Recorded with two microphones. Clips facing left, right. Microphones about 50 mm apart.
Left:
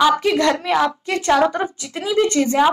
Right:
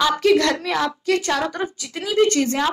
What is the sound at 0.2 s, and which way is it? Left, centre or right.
A woman's voice, centre.